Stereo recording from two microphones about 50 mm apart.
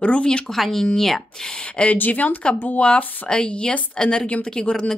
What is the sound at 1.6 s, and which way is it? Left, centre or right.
Speech, left.